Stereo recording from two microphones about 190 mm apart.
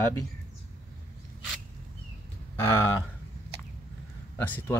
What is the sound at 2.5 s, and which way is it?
Speech, 15° left (ahead or behind).